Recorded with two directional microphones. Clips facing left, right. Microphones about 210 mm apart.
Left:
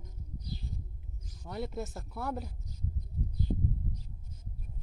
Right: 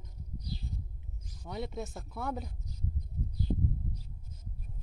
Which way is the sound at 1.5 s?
Centre (ahead or behind).